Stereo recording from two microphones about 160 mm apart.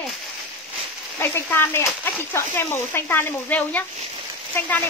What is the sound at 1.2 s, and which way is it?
Speech, 15° left (ahead or behind).